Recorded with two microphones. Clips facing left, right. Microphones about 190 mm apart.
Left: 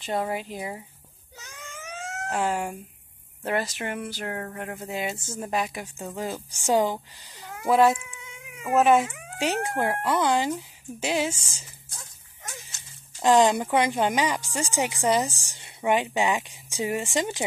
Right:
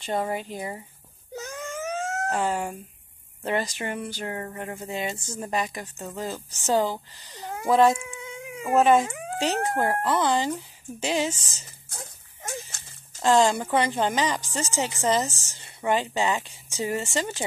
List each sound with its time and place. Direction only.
0.0 s speech: centre (ahead or behind)
1.3 s wail: 45° right (ahead or behind)
2.3 s a woman's voice: 5° left (ahead or behind)
7.3 s a sound: 40° right (ahead or behind)
7.6 s a woman's voice: 10° left (ahead or behind)
8.1 s cat: 35° right (ahead or behind)
8.7 s speech: 5° left (ahead or behind)
9.0 s speech: 35° right (ahead or behind)
9.4 s a woman's voice: 10° left (ahead or behind)
11.9 s a sound: 55° right (ahead or behind)
13.2 s a woman's voice: 15° left (ahead or behind)